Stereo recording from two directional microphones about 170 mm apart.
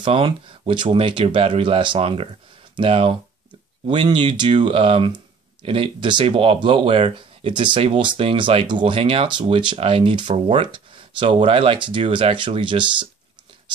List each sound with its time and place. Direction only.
0.0 s speech: 30° right (ahead or behind)